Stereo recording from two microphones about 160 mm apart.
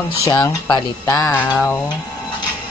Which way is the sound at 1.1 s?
5° left (ahead or behind).